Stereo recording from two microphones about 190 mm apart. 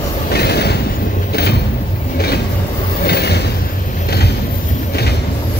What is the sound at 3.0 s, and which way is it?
Vehicle, 60° left (ahead or behind).